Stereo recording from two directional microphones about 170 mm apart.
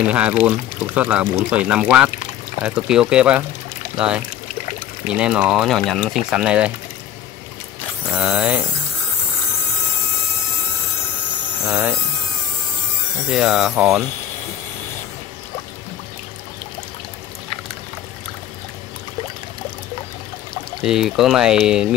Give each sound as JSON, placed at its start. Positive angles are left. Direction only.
{"t": 0.1, "sound": "speech", "side_deg": -5}
{"t": 5.0, "sound": "speech", "side_deg": -5}
{"t": 8.2, "sound": "speech", "side_deg": -10}
{"t": 11.6, "sound": "speech", "side_deg": -15}
{"t": 13.3, "sound": "speech", "side_deg": -5}
{"t": 20.8, "sound": "speech", "side_deg": -5}